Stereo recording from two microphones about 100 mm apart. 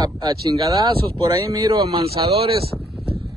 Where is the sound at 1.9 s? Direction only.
75° right (ahead or behind).